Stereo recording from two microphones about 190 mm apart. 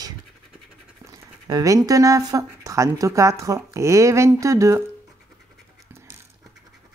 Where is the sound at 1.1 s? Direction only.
20° right (ahead or behind).